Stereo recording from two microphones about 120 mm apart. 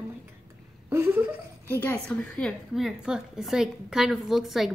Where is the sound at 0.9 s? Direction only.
20° right (ahead or behind).